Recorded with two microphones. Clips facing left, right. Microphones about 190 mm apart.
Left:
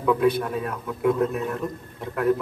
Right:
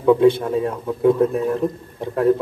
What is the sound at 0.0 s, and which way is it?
A man's voice, 25° right (ahead or behind).